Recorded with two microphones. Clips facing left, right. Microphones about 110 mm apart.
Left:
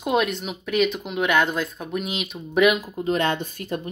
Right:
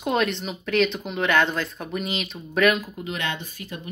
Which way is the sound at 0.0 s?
5° left (ahead or behind).